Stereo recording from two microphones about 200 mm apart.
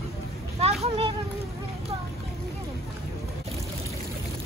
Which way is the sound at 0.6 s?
30° right (ahead or behind).